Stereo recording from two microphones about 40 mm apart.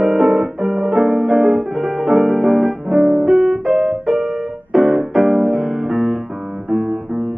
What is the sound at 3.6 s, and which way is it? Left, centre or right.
Music, centre.